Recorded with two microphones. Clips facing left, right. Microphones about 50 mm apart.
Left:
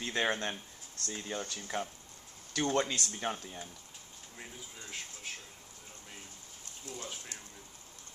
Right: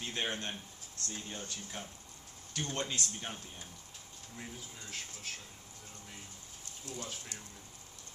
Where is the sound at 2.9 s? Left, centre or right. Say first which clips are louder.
Left 4 dB; left.